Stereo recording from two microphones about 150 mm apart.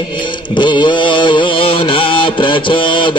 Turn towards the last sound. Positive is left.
turn(degrees=35)  # may be behind; listen again after turning